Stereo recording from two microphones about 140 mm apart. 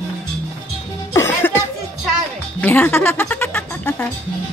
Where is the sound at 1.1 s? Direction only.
20° left (ahead or behind).